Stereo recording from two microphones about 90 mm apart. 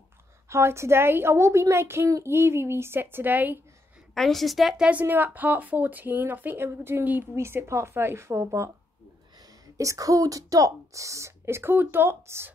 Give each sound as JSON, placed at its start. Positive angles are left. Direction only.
{"t": 0.5, "sound": "a woman's voice", "side_deg": -30}
{"t": 4.1, "sound": "a woman's voice", "side_deg": 5}
{"t": 4.8, "sound": "a woman's voice", "side_deg": -20}
{"t": 9.8, "sound": "a woman's voice", "side_deg": -40}